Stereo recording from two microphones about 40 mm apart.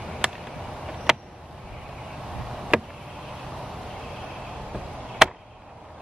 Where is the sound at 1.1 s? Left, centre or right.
Centre.